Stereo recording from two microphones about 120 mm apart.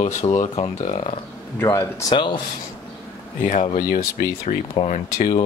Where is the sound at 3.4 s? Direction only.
90° left.